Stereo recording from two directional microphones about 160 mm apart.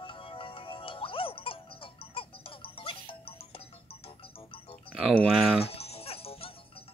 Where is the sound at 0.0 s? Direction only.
35° left (ahead or behind).